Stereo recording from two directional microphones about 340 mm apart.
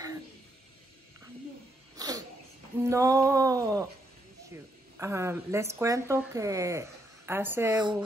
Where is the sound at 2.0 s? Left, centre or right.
Centre.